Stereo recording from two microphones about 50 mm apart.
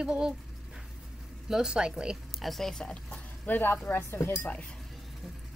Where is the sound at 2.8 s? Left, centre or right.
Centre.